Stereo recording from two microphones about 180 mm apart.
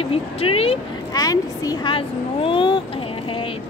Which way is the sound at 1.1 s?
20° left (ahead or behind).